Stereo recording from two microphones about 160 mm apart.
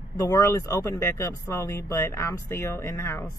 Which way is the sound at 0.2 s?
20° left (ahead or behind).